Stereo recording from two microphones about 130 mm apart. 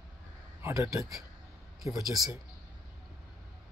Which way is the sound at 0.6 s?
25° right (ahead or behind).